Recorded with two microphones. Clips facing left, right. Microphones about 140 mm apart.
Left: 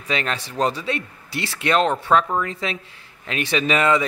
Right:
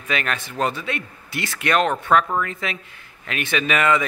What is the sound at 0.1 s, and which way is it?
Speech, 25° left (ahead or behind).